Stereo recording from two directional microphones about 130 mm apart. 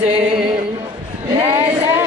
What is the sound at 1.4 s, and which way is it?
Speech, 20° right (ahead or behind).